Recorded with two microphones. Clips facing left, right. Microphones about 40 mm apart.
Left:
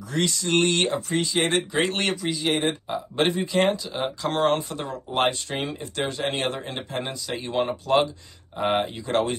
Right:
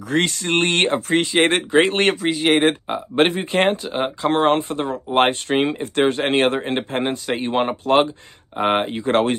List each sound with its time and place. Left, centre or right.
0.1 s speech: right